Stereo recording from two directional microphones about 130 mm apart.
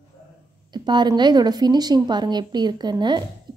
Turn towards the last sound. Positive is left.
turn(degrees=-35)  # may be behind; listen again after turning